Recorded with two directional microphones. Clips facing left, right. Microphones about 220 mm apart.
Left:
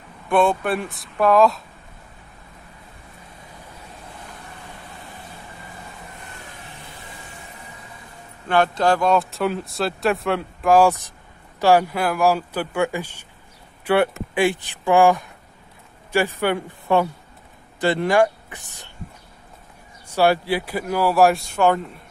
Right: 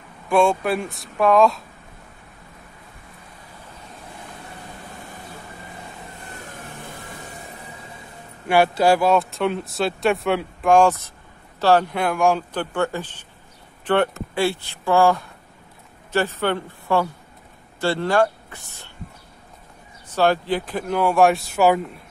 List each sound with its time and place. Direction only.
0.3 s speech: centre (ahead or behind)
6.5 s vehicle: 50° right (ahead or behind)
8.5 s speech: 10° right (ahead or behind); by 18.9 s 15° left (ahead or behind)
20.1 s speech: 10° left (ahead or behind); by 22.0 s 5° right (ahead or behind)